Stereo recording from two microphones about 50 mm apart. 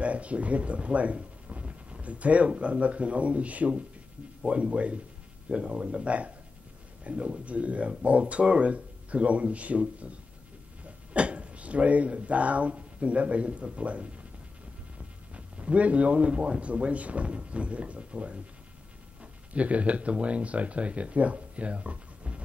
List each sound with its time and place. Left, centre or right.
0.0 s speech: right
11.1 s speech: right
15.3 s speech: right
19.5 s speech: right